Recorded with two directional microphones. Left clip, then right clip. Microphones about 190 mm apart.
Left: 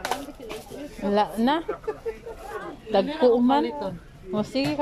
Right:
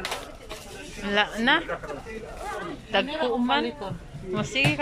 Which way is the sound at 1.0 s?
25° left (ahead or behind).